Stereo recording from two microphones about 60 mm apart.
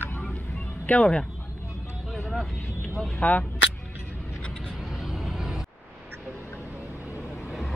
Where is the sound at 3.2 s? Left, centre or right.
Left.